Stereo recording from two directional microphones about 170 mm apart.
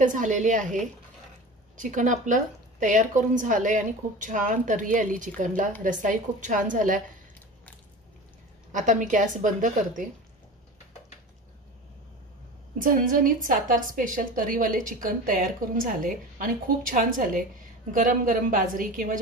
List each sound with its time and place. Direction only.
0.0 s a woman's voice: 50° right (ahead or behind)
8.7 s a woman's voice: 50° right (ahead or behind)
12.8 s a woman's voice: 50° right (ahead or behind)